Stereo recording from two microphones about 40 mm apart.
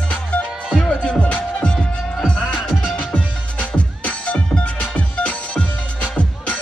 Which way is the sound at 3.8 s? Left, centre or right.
Left.